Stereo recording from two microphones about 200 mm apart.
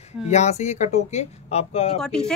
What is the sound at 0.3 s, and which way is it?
Speech, 35° left (ahead or behind).